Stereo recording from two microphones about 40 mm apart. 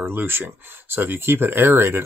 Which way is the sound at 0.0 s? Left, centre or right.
Right.